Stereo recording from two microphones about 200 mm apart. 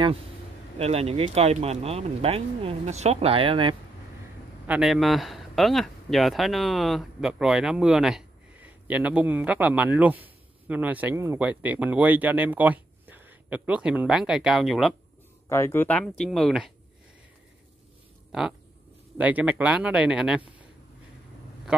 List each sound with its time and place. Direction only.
0.0 s speech: 30° right (ahead or behind)
4.6 s speech: 5° right (ahead or behind)
15.4 s speech: 15° left (ahead or behind)
19.1 s speech: 5° right (ahead or behind)
21.7 s a man's voice: 5° right (ahead or behind)